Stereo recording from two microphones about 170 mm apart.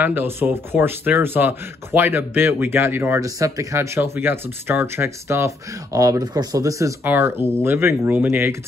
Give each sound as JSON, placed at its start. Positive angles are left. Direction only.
{"t": 0.0, "sound": "speech", "side_deg": -10}